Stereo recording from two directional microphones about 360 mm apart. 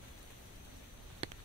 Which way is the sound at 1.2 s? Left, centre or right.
Centre.